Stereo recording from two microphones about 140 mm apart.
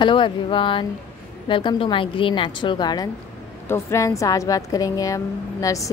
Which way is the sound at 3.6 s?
20° left (ahead or behind).